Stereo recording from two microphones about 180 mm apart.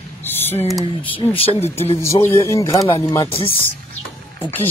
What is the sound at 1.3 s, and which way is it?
Speech, 35° left (ahead or behind).